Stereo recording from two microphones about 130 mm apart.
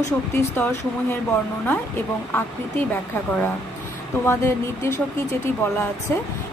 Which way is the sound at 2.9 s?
15° left (ahead or behind).